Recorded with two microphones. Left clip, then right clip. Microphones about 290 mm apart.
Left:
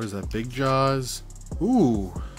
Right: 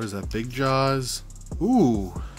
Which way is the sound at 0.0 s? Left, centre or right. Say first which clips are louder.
Right 1 dB; centre.